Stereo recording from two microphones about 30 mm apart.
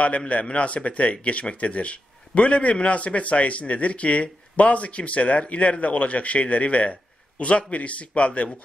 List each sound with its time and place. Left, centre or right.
0.5 s a man's voice: left